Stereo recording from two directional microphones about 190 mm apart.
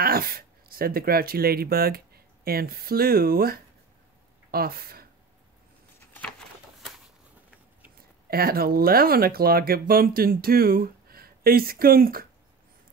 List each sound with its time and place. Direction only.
0.0 s speech: 50° right (ahead or behind)
8.3 s speech: 50° right (ahead or behind)